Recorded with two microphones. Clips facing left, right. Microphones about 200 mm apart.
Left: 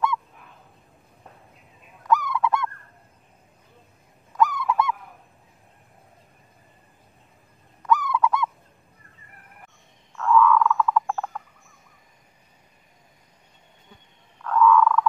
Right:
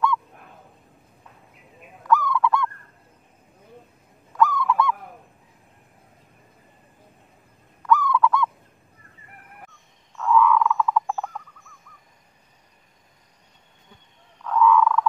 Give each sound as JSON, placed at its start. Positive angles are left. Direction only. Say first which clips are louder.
{"t": 2.0, "sound": "goose", "louder": "right 2 dB", "side_deg": 20}
{"t": 4.4, "sound": "goose", "louder": "right 1 dB", "side_deg": 15}
{"t": 7.8, "sound": "goose", "louder": "right 2 dB", "side_deg": 15}
{"t": 10.1, "sound": "frog", "louder": "even", "side_deg": -5}
{"t": 14.4, "sound": "frog", "louder": "even", "side_deg": -5}